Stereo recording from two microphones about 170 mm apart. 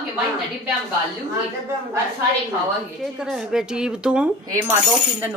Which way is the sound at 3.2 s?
5° right (ahead or behind).